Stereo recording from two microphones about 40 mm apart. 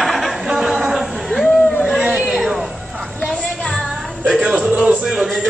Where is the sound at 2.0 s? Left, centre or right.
Right.